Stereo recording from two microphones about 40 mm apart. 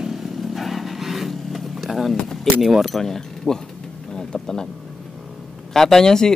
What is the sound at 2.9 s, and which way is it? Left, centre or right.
Speech, centre.